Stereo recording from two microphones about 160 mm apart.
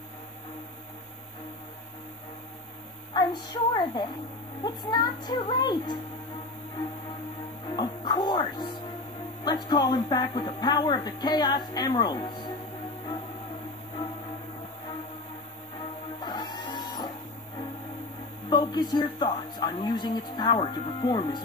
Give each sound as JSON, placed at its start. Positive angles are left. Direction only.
{"t": 3.1, "sound": "a woman's voice", "side_deg": 30}
{"t": 7.7, "sound": "speech", "side_deg": 25}
{"t": 16.3, "sound": "printer", "side_deg": 25}
{"t": 18.5, "sound": "speech", "side_deg": 25}